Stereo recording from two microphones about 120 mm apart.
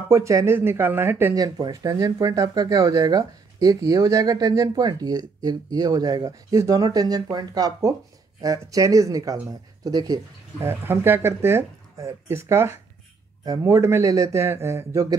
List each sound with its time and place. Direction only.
0.1 s speech: 25° right (ahead or behind)
10.7 s speech: 20° right (ahead or behind)